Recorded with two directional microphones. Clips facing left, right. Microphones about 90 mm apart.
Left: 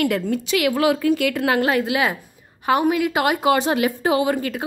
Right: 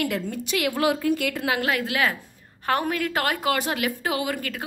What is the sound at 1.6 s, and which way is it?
A woman's voice, 25° left (ahead or behind).